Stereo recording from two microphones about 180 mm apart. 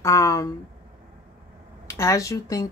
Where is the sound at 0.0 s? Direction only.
15° left (ahead or behind).